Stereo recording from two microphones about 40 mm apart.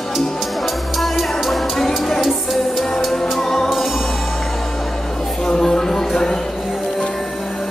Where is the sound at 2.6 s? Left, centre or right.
Centre.